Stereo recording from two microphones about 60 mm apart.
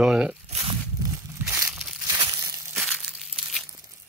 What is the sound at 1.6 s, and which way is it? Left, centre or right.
Crumpling, right.